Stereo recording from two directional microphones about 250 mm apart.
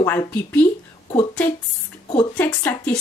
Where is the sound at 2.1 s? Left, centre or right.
Centre.